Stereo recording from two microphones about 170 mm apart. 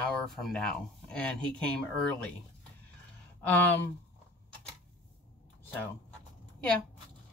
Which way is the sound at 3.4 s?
10° left (ahead or behind).